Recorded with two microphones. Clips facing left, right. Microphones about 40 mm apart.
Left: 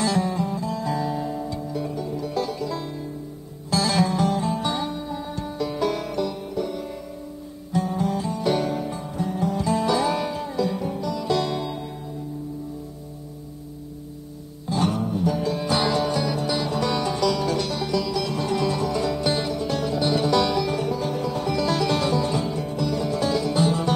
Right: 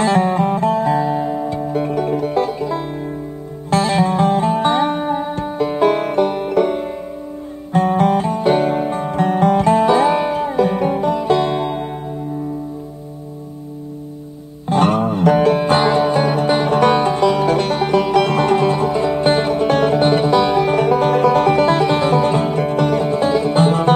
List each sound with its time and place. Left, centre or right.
0.0 s music: right
2.3 s music: right
9.8 s music: right
14.7 s music: right
21.6 s music: right